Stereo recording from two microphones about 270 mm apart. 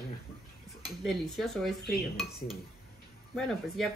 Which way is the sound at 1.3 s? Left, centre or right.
Centre.